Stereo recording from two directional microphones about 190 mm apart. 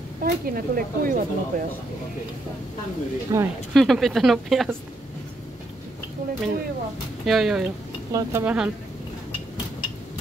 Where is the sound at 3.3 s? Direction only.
20° right (ahead or behind).